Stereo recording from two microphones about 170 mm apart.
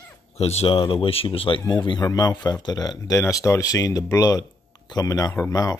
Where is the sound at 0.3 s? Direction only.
40° left (ahead or behind).